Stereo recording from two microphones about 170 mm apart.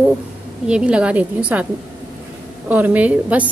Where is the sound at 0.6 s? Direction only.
5° right (ahead or behind).